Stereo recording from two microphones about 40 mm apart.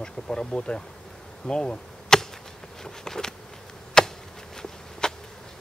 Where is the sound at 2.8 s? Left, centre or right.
Centre.